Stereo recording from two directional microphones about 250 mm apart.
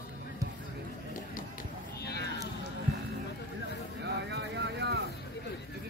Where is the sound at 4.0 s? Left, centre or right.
Right.